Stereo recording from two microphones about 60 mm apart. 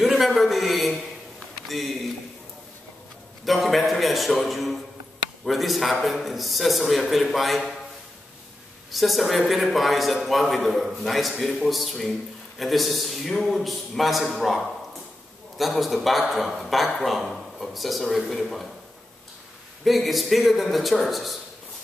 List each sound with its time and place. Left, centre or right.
0.0 s a man's voice: centre
3.4 s a man's voice: centre
8.9 s a man's voice: centre
19.8 s a man's voice: centre